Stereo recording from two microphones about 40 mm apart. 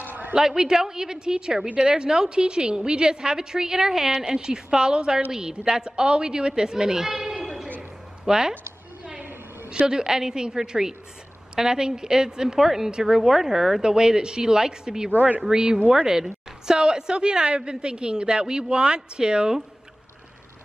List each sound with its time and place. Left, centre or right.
0.0 s a sound: right
0.3 s a woman's voice: centre
9.7 s speech: right
15.1 s speech: right
15.5 s a woman's voice: right